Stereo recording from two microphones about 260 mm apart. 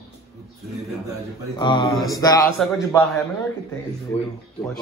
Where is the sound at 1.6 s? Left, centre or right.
Centre.